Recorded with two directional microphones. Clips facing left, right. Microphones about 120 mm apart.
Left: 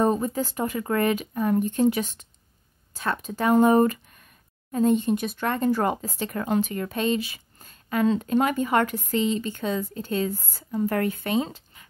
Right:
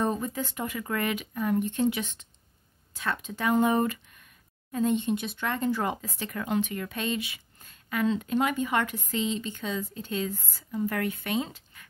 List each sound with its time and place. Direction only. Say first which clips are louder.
0.0 s speech: left 6 dB; 35° left (ahead or behind)
5.9 s speech: left 5 dB; 30° left (ahead or behind)